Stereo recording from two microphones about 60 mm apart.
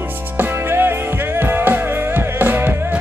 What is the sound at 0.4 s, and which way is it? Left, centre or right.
Music, right.